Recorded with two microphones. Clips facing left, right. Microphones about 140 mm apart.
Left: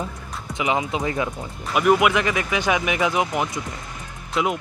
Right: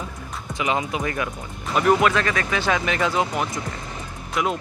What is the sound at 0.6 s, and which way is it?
Speech, 20° left (ahead or behind).